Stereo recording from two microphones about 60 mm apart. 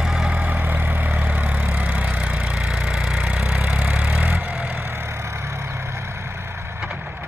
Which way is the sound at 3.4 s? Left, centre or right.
Right.